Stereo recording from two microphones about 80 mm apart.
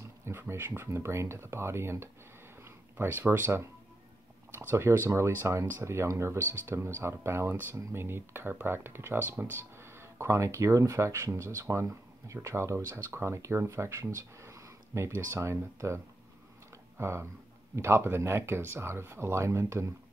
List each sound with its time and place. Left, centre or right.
0.0 s speech: right
17.0 s speech: right